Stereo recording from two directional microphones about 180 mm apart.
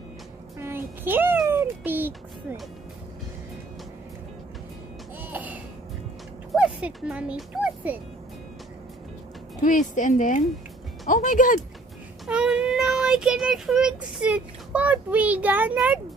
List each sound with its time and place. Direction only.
0.6 s a sound: 15° right (ahead or behind)
5.2 s music: 10° right (ahead or behind)
6.5 s speech: 5° right (ahead or behind)
9.6 s speech: 45° left (ahead or behind)
12.3 s speech: 5° right (ahead or behind)